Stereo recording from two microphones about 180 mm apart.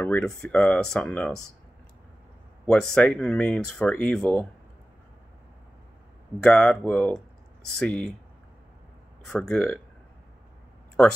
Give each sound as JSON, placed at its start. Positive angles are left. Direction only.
{"t": 0.0, "sound": "speech", "side_deg": 5}
{"t": 2.6, "sound": "speech", "side_deg": 5}
{"t": 6.4, "sound": "speech", "side_deg": 5}
{"t": 9.2, "sound": "speech", "side_deg": 5}